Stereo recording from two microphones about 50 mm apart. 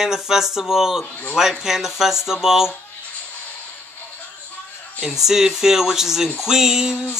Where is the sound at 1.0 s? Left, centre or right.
Left.